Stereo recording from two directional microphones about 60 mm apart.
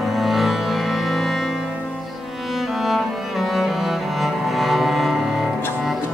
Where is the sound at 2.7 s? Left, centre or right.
Centre.